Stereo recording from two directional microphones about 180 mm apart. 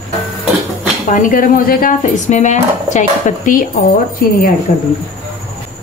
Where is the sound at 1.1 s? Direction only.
45° left (ahead or behind).